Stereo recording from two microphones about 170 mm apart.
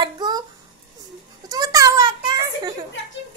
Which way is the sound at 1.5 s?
20° right (ahead or behind).